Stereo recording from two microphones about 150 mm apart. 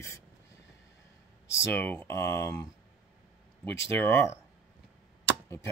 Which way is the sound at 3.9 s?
15° left (ahead or behind).